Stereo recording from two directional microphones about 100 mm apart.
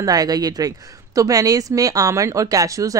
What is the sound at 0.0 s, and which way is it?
Speech, 40° right (ahead or behind).